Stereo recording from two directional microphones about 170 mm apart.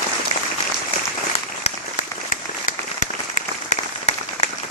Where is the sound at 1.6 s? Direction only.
45° left (ahead or behind).